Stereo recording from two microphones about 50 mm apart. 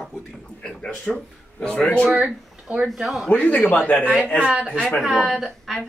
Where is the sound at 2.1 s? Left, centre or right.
Right.